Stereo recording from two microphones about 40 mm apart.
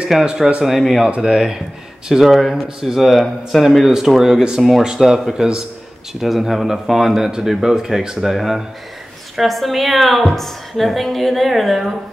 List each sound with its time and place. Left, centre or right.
0.1 s a woman's voice: centre
1.2 s a woman's voice: centre